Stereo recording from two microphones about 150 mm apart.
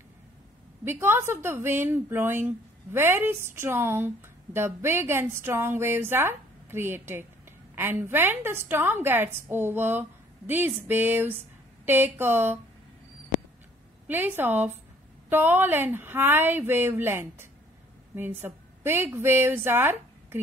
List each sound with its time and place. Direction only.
0.8 s a woman's voice: 15° right (ahead or behind)
14.0 s a woman's voice: 15° right (ahead or behind)